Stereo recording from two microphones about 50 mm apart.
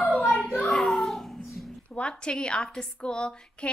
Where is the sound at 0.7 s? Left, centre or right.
Centre.